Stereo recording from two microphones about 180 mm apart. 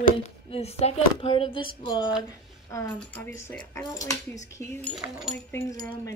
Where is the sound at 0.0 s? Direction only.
35° left (ahead or behind).